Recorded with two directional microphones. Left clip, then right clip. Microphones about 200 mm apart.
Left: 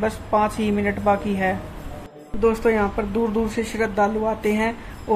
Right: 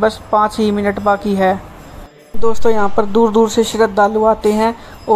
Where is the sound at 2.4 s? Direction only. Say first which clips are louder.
Right 4 dB; 30° right (ahead or behind).